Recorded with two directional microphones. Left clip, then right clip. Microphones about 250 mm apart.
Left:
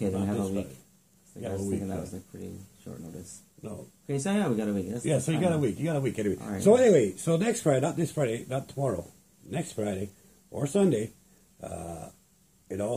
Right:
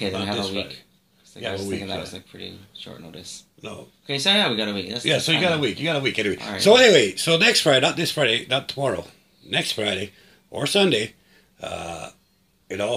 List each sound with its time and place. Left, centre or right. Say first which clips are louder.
0.1 s speech: right 6 dB; centre
4.2 s speech: right 11 dB; centre
4.9 s a man's voice: right 11 dB; centre